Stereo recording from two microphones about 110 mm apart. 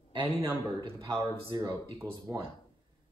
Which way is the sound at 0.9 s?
30° right (ahead or behind).